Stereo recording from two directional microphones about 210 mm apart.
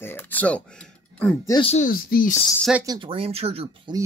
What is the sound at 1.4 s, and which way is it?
Speech, 20° left (ahead or behind).